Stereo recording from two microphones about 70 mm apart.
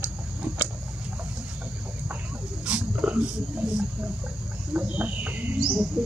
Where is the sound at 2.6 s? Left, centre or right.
Centre.